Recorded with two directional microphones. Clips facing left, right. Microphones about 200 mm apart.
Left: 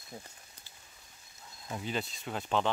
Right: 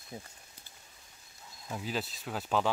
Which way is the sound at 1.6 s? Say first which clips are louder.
Even; centre (ahead or behind).